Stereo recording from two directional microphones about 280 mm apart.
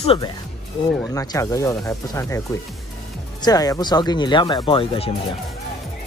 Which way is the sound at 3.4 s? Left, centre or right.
Centre.